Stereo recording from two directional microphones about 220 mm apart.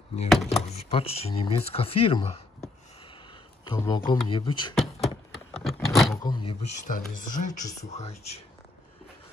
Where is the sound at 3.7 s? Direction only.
20° left (ahead or behind).